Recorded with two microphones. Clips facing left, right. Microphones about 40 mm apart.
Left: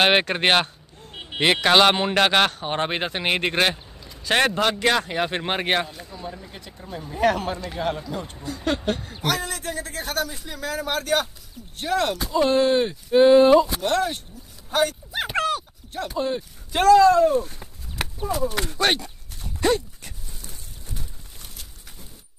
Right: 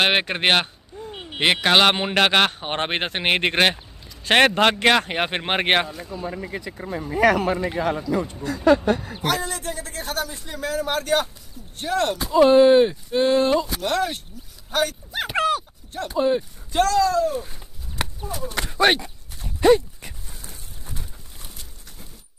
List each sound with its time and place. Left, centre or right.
0.0 s a man's voice: centre
2.6 s speech: right
6.4 s speech: right
9.2 s a man's voice: centre
13.1 s speech: centre
14.7 s chopping: centre
16.2 s a man's voice: centre
16.7 s speech: centre
17.0 s speech: left
18.0 s a sound: centre
18.7 s a sound: centre